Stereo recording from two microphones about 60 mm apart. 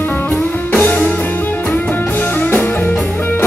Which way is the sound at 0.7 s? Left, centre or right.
Left.